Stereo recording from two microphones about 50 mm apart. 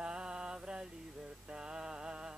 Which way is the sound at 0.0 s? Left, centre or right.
Centre.